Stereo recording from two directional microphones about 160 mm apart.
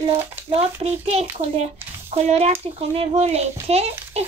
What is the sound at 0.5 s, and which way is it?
A child's voice, 40° right (ahead or behind).